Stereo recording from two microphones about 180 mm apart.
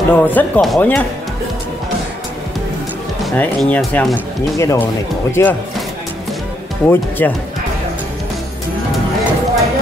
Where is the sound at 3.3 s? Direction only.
10° left (ahead or behind).